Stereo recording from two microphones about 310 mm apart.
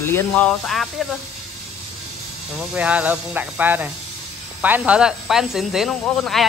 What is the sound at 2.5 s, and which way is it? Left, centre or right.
Speech, centre.